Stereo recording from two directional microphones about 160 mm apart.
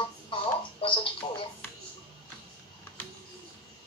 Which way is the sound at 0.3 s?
35° left (ahead or behind).